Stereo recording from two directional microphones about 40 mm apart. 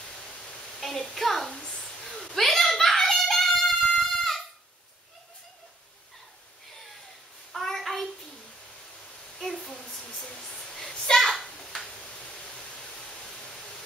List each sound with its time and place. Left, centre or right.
0.7 s a child's voice: centre
2.3 s screaming: centre
7.5 s child singing: centre
9.4 s a sound: centre